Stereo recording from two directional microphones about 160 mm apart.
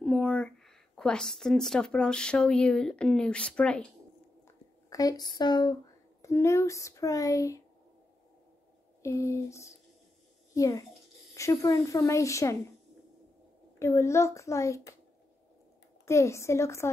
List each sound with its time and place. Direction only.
0.0 s speech: 5° left (ahead or behind)
4.8 s speech: 20° left (ahead or behind)
9.0 s a woman's voice: 20° left (ahead or behind)
13.7 s speech: 15° left (ahead or behind)
16.1 s a woman's voice: 20° left (ahead or behind)